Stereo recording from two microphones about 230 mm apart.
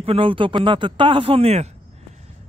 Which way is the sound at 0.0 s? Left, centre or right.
Right.